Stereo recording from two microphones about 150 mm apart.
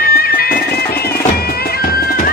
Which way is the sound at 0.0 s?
80° left.